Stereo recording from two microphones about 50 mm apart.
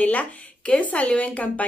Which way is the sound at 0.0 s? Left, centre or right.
Left.